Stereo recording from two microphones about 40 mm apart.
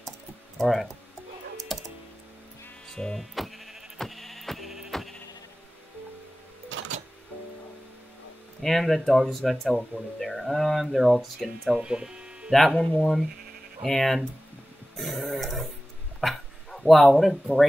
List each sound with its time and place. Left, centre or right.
0.6 s speech: centre
1.7 s music: centre
2.9 s a sound: centre
3.2 s bleat: centre
8.6 s speech: centre
11.8 s speech: right
12.4 s speech: centre
12.7 s speech: left
13.8 s speech: centre
15.0 s a sound: centre
16.2 s bow-wow: centre
16.9 s speech: centre